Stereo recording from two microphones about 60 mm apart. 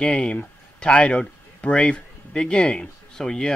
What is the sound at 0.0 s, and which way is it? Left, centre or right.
Speech, centre.